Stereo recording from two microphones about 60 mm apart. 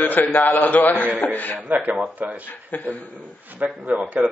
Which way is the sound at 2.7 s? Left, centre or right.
Left.